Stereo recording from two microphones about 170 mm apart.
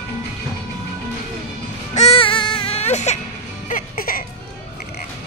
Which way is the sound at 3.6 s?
55° left (ahead or behind).